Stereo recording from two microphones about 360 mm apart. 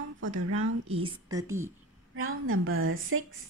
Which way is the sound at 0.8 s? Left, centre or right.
Centre.